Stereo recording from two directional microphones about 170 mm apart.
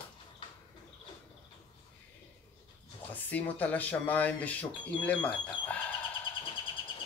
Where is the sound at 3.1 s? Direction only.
10° left (ahead or behind).